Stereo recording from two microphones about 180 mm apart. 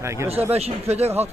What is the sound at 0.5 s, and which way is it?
Speech, 35° right (ahead or behind).